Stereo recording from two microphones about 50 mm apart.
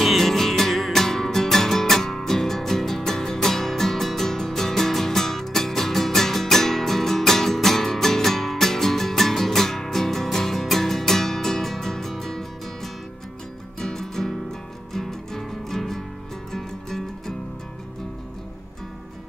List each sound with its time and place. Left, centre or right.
0.0 s music: centre